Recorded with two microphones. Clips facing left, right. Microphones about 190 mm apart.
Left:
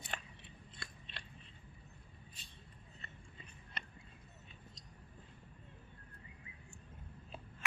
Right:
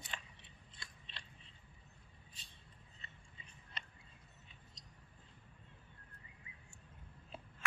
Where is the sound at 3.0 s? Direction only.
60° left (ahead or behind).